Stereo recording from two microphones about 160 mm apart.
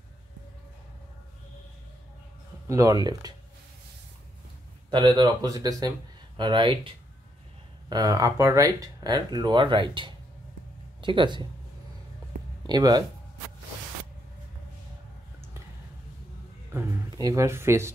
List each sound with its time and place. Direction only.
2.7 s speech: 20° right (ahead or behind)
4.9 s speech: 30° right (ahead or behind)
7.9 s speech: 20° right (ahead or behind)
12.6 s speech: 25° right (ahead or behind)
16.7 s speech: 20° right (ahead or behind)